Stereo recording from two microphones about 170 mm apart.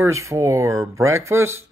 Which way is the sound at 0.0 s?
15° right (ahead or behind).